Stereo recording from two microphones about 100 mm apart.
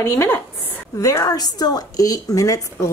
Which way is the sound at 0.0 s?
25° left (ahead or behind).